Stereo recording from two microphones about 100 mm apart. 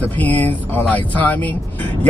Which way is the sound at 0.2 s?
15° left (ahead or behind).